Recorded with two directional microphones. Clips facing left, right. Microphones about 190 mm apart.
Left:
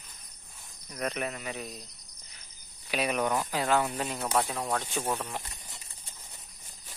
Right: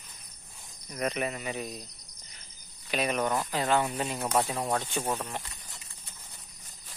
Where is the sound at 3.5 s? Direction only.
5° left (ahead or behind).